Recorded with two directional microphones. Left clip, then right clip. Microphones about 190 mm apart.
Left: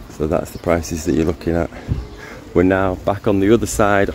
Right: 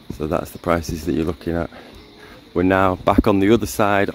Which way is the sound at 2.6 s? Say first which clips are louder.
Right 6 dB; 35° right (ahead or behind).